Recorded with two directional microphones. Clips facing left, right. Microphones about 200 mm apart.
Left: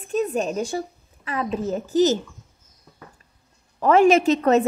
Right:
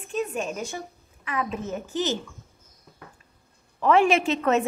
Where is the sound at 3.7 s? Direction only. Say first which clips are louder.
Left 4 dB; 40° left (ahead or behind).